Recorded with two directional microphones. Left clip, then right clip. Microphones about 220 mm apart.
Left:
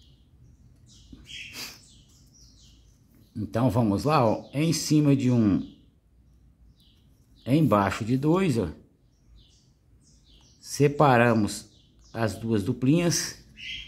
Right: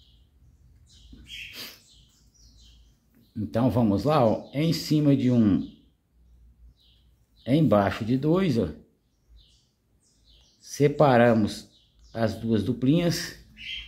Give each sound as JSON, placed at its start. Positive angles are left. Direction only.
{"t": 3.3, "sound": "speech", "side_deg": 20}
{"t": 7.4, "sound": "speech", "side_deg": 20}
{"t": 10.6, "sound": "speech", "side_deg": 20}